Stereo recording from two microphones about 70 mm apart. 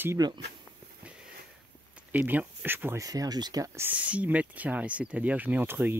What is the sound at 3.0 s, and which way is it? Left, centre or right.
Speech, right.